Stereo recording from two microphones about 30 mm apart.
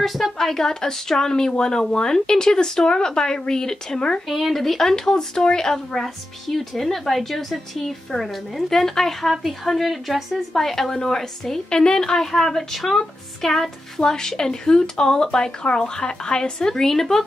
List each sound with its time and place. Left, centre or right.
0.0 s a woman's voice: centre
0.5 s speech: centre
2.1 s speech: left
4.3 s a woman's voice: centre
4.9 s a woman's voice: left
12.3 s a woman's voice: centre
14.0 s speech: left
16.8 s a woman's voice: centre